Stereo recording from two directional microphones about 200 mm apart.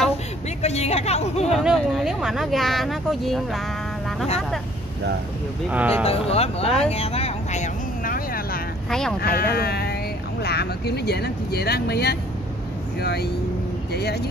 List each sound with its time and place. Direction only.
0.6 s speech: 30° left (ahead or behind)
1.5 s speech: centre (ahead or behind)
5.7 s speech: 5° right (ahead or behind)
6.0 s speech: 30° left (ahead or behind)
6.9 s vehicle: 30° left (ahead or behind); by 8.5 s 45° left (ahead or behind)
9.2 s speech: 50° left (ahead or behind)